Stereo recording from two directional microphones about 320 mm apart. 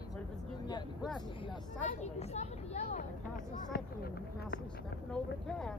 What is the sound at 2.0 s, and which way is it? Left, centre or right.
Speech, centre.